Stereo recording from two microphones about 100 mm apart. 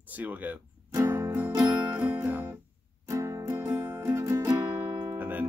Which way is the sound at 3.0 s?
30° right (ahead or behind).